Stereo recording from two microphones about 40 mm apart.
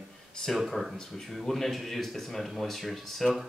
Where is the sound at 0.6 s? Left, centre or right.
Centre.